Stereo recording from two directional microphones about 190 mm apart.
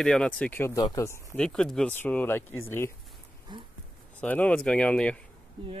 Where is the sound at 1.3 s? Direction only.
5° left (ahead or behind).